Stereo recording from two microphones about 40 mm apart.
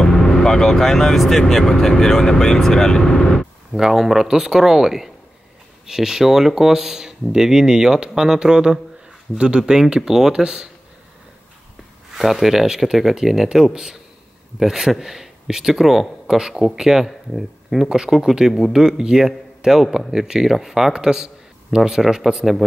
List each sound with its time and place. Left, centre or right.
0.0 s speech: centre
3.7 s speech: centre
12.1 s speech: centre
17.8 s speech: right